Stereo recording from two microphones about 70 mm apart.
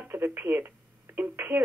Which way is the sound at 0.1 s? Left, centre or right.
Right.